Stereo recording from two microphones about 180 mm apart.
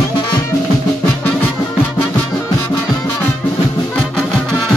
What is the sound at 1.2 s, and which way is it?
Music, 10° left (ahead or behind).